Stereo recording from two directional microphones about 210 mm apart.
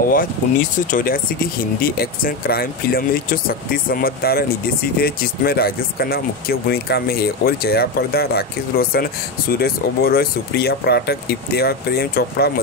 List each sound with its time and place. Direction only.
0.1 s speech: 40° left (ahead or behind)